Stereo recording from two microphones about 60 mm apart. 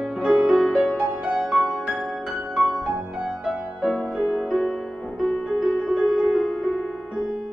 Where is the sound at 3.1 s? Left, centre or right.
Centre.